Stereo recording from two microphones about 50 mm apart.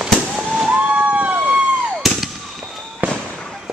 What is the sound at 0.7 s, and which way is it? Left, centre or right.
Vehicle, right.